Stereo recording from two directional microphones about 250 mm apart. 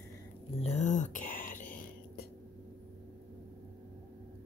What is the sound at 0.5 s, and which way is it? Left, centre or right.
Speech, left.